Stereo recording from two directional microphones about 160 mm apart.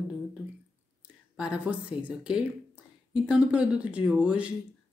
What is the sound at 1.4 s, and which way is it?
A woman's voice, 5° right (ahead or behind).